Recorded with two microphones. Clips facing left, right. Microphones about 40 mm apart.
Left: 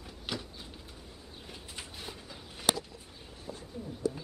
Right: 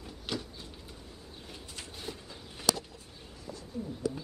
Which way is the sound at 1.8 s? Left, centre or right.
Centre.